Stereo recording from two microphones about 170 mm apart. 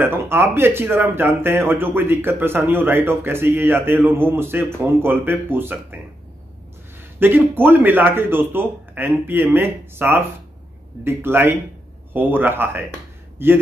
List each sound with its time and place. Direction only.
0.0 s speech: 15° right (ahead or behind)
7.2 s speech: 10° right (ahead or behind)